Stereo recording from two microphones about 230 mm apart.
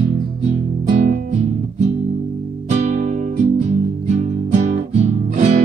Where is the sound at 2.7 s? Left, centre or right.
Right.